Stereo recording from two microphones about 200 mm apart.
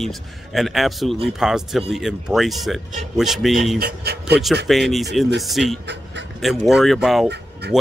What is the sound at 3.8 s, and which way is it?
Speech, 55° right (ahead or behind).